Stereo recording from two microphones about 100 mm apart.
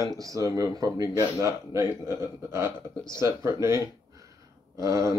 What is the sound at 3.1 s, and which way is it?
Speech, 30° right (ahead or behind).